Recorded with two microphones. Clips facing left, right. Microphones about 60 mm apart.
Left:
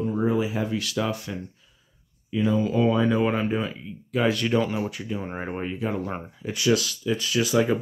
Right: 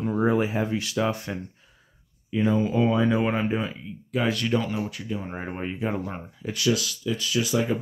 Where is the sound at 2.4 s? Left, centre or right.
Right.